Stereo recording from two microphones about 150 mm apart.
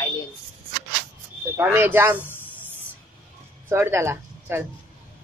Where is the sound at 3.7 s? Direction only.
15° right (ahead or behind).